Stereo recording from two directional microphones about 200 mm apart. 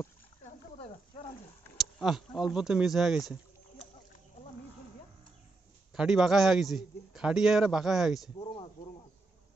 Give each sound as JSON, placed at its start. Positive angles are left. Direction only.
{"t": 0.4, "sound": "wild animals", "side_deg": 30}
{"t": 1.8, "sound": "a man's voice", "side_deg": 0}
{"t": 5.9, "sound": "a man's voice", "side_deg": -5}
{"t": 8.4, "sound": "a sound", "side_deg": 25}